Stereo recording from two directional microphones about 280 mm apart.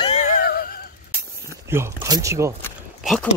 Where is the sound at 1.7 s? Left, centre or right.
Centre.